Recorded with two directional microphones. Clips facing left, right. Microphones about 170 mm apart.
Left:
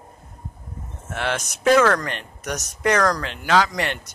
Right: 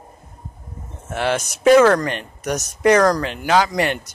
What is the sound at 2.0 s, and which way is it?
Speech, 5° right (ahead or behind).